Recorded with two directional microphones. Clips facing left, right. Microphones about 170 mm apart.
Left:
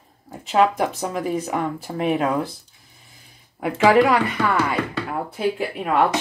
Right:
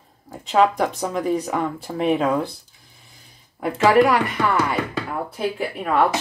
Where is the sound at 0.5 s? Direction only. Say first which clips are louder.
Right 1 dB; 5° left (ahead or behind).